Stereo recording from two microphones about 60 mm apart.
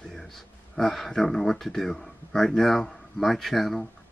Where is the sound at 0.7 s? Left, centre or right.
Centre.